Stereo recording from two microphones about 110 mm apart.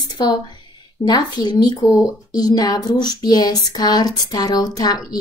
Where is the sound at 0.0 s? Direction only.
40° left (ahead or behind).